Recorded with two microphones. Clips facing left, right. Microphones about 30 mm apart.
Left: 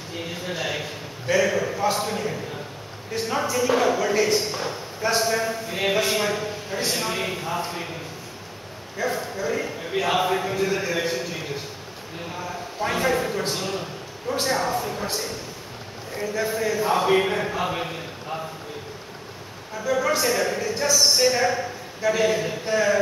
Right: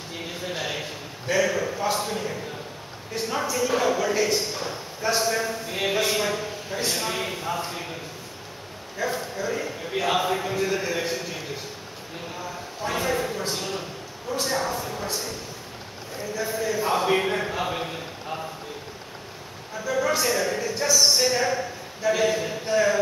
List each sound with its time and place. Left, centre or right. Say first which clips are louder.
0.5 s a man's voice: left 2 dB; left
1.2 s a man's voice: left 2 dB; centre
4.0 s a man's voice: left 2 dB; centre
4.3 s speech: left 3 dB; left
4.6 s a man's voice: left 2 dB; centre
8.9 s a man's voice: left 2 dB; centre
13.0 s a man's voice: left 3 dB; left
16.2 s a man's voice: left 3 dB; left
16.8 s a man's voice: left 3 dB; centre
19.8 s a man's voice: left 2 dB; centre